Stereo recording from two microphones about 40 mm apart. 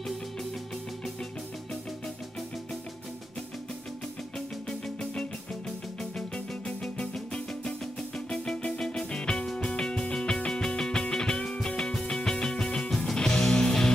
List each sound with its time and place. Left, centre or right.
4.6 s music: centre